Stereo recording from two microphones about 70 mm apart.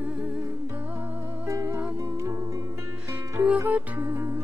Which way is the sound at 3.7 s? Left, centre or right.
Right.